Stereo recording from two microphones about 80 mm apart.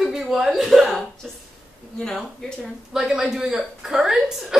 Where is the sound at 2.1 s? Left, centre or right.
Centre.